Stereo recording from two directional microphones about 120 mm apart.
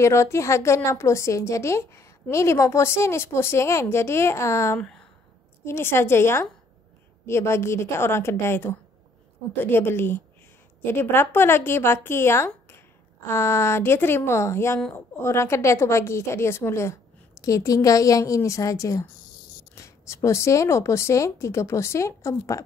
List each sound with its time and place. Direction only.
0.0 s a woman's voice: 25° left (ahead or behind)
4.7 s speech: 5° left (ahead or behind)
5.7 s a woman's voice: 20° left (ahead or behind)